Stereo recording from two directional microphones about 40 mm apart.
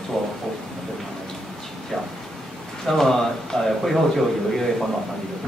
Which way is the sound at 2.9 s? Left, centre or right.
Centre.